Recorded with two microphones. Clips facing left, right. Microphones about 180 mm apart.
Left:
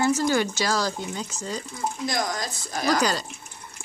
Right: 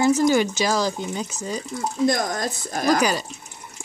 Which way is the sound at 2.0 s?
50° right (ahead or behind).